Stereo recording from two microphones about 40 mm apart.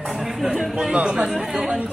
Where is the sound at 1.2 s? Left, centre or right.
Centre.